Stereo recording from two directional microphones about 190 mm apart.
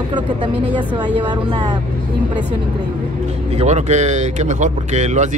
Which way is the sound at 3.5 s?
35° right (ahead or behind).